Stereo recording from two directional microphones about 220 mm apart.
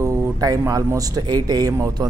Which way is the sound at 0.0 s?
15° right (ahead or behind).